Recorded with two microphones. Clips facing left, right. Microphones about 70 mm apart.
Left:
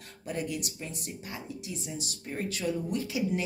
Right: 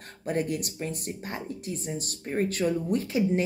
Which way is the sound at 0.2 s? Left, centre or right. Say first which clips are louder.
Right 5 dB; right.